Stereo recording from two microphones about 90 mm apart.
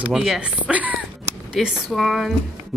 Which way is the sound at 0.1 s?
5° right (ahead or behind).